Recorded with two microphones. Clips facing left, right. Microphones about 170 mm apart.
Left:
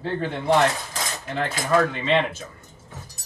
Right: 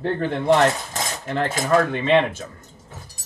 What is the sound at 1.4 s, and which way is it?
Speech, 50° right (ahead or behind).